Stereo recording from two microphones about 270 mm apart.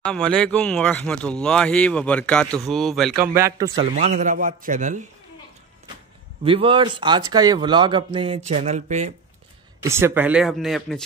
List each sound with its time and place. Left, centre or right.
0.0 s speech: centre
3.3 s a man's voice: centre; by 5.0 s right
6.4 s a man's voice: centre
9.8 s speech: centre